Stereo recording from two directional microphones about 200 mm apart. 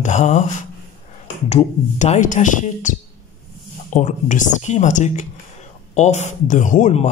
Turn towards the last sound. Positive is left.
turn(degrees=35)  # may be behind; listen again after turning